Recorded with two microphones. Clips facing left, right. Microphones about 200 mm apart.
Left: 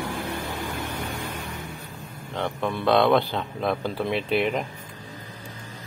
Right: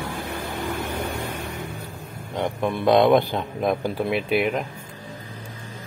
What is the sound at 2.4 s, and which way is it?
Speech, 15° right (ahead or behind).